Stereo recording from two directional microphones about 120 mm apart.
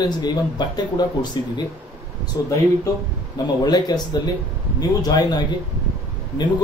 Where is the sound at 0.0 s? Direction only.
35° left (ahead or behind).